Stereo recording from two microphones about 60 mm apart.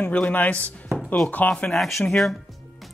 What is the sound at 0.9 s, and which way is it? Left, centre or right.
Music, centre.